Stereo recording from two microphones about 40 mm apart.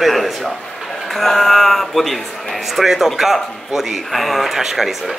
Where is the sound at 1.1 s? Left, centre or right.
Centre.